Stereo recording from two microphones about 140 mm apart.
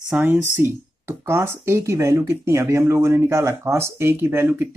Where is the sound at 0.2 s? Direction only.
15° right (ahead or behind).